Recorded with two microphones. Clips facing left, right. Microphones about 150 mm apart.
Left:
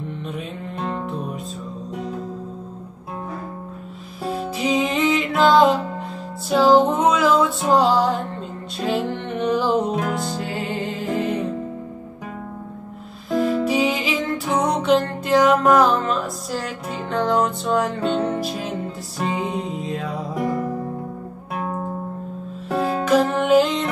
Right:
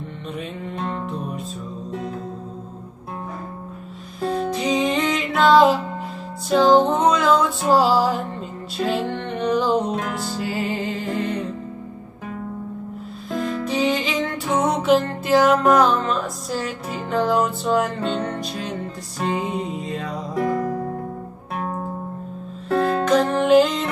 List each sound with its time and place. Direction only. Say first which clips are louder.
0.7 s music: left 1 dB; centre (ahead or behind)
4.2 s music: right 2 dB; 5° left (ahead or behind)
13.3 s music: left 5 dB; 5° left (ahead or behind)
22.7 s music: right 1 dB; 10° left (ahead or behind)